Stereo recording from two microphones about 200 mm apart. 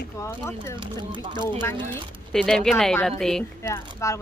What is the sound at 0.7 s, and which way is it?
Speech, 25° right (ahead or behind).